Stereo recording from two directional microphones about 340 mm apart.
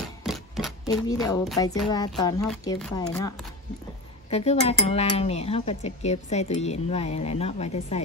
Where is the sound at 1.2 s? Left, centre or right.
Centre.